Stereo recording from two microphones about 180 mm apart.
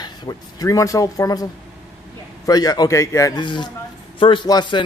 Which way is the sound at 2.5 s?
20° left (ahead or behind).